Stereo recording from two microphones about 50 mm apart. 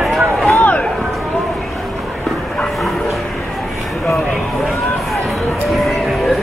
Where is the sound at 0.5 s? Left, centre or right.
Left.